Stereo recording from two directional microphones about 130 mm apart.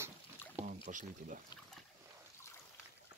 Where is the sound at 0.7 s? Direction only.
80° right.